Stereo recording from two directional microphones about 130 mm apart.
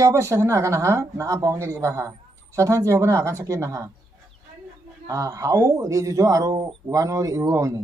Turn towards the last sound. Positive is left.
turn(degrees=-25)  # may be behind; listen again after turning